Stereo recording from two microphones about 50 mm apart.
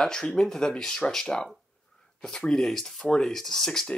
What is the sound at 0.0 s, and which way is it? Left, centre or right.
Speech, centre.